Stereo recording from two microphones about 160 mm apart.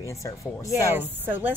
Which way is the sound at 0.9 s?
10° right (ahead or behind).